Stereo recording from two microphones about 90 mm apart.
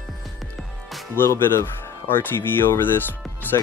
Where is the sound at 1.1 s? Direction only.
25° left (ahead or behind).